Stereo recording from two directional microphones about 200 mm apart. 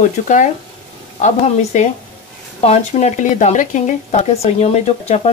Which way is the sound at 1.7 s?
35° left (ahead or behind).